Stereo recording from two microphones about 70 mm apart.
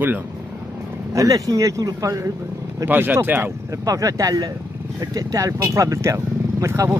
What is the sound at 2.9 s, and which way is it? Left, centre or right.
Speech, right.